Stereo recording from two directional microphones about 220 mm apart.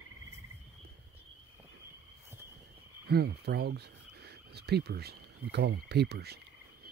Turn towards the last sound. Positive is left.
turn(degrees=-45)  # may be behind; listen again after turning